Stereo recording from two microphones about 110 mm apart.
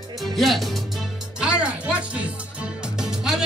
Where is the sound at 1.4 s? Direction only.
10° right (ahead or behind).